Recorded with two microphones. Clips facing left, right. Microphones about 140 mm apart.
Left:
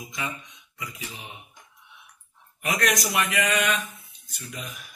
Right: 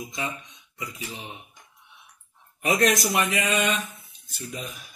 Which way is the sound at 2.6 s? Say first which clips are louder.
Right 4 dB; 30° right (ahead or behind).